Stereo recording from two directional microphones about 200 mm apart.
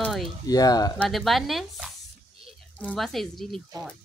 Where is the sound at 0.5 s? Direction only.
20° left (ahead or behind).